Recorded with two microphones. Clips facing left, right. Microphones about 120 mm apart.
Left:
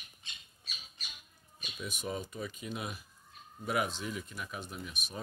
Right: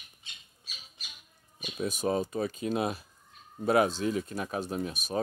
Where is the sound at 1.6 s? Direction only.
40° right (ahead or behind).